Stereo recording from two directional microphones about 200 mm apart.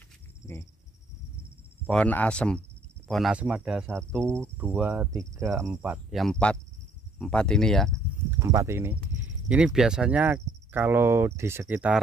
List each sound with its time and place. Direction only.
1.9 s speech: 5° left (ahead or behind)
8.3 s speech: 15° right (ahead or behind)